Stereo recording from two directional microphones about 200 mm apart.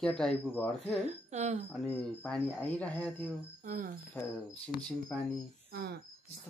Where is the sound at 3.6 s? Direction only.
40° right (ahead or behind).